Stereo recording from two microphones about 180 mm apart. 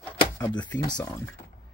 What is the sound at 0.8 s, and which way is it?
Speech, 20° left (ahead or behind).